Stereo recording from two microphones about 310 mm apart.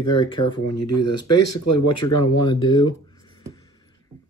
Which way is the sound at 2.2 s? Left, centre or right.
Centre.